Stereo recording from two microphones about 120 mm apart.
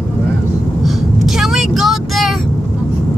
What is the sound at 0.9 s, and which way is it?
Vehicle, centre (ahead or behind).